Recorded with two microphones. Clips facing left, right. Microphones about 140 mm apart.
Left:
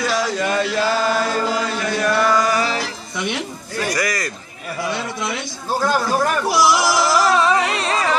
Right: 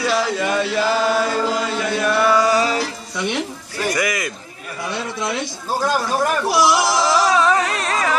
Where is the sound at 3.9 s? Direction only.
5° right (ahead or behind).